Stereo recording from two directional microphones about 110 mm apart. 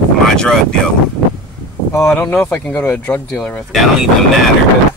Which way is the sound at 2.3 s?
20° left (ahead or behind).